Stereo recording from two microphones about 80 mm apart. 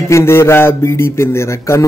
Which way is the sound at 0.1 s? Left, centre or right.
Left.